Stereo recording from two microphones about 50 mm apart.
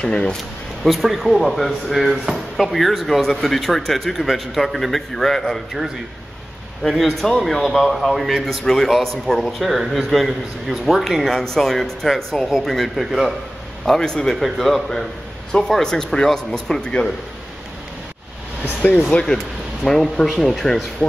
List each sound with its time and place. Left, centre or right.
0.0 s speech: centre
0.8 s a man's voice: centre
7.0 s a man's voice: centre
13.8 s a man's voice: centre
18.8 s speech: left
19.8 s a man's voice: centre